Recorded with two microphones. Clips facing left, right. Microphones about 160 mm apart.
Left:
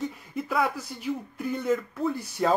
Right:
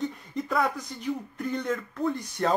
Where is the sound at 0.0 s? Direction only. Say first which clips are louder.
Right 1 dB; 5° left (ahead or behind).